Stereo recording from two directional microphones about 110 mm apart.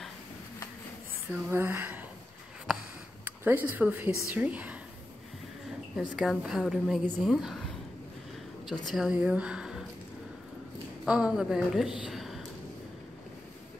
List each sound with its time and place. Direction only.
1.3 s a sound: 20° right (ahead or behind)
3.3 s speech: 15° right (ahead or behind)
4.3 s a sound: 15° right (ahead or behind)
5.9 s a woman's voice: 5° right (ahead or behind)
8.8 s a woman's voice: 5° right (ahead or behind)
11.1 s a woman's voice: 10° right (ahead or behind)